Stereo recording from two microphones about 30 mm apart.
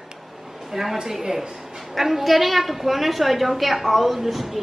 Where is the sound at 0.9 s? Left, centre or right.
Centre.